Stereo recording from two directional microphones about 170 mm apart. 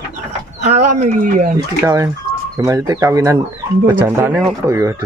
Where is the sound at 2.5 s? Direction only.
20° right (ahead or behind).